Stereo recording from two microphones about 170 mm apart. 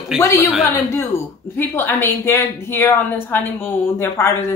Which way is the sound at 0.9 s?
15° left (ahead or behind).